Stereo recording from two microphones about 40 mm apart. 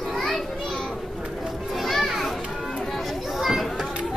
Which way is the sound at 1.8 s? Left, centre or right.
Centre.